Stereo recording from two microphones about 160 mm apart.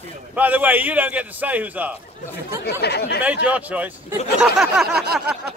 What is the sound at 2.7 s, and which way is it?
Speech, 90° left.